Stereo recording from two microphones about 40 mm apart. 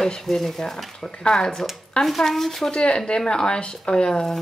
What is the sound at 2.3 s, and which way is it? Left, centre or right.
Speech, centre.